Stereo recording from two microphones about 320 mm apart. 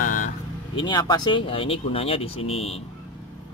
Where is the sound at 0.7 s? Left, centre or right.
Centre.